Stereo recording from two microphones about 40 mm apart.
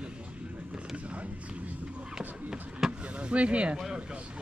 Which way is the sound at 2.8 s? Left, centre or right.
Centre.